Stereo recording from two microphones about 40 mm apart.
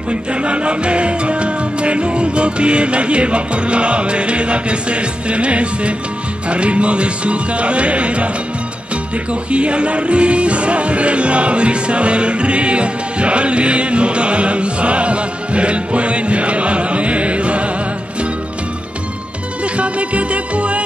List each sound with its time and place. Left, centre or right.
0.1 s music: right
9.3 s music: right
19.6 s music: right